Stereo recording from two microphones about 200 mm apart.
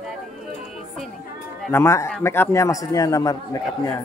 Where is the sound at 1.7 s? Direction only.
15° left (ahead or behind).